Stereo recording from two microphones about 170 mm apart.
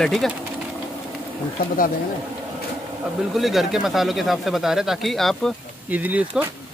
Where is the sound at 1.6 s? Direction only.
55° left (ahead or behind).